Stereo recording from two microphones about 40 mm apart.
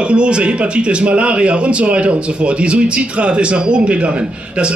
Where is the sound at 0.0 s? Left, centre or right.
Right.